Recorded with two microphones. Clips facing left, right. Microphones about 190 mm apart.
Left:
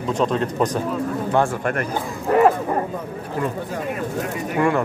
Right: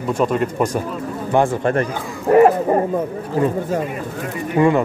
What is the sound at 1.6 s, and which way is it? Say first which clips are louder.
Speech: right 5 dB; 30° right (ahead or behind).